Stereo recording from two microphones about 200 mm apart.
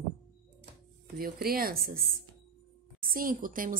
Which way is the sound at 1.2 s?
50° right (ahead or behind).